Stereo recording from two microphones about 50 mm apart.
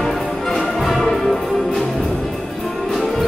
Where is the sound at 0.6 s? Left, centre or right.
Centre.